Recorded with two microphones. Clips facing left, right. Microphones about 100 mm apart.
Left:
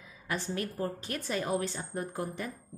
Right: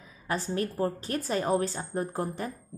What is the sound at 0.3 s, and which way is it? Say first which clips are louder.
Speech: right 4 dB; 35° right (ahead or behind).